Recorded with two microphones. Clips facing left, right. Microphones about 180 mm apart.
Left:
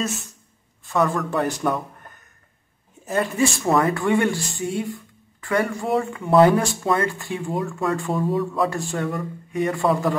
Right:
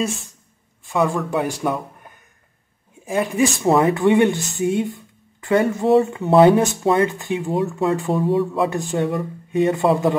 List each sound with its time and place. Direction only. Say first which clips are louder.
0.8 s speech: right 1 dB; 10° right (ahead or behind)
3.6 s speech: right 6 dB; 25° right (ahead or behind)